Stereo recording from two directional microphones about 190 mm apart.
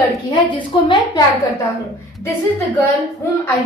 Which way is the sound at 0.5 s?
25° left (ahead or behind).